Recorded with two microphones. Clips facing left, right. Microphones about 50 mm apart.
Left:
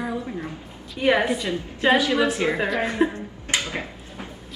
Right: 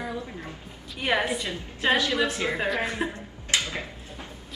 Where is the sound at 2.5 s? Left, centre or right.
Centre.